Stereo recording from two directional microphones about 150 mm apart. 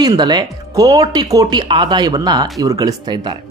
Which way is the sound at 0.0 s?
30° right (ahead or behind).